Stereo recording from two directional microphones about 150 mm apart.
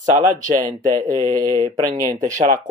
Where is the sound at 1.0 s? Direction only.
25° right (ahead or behind).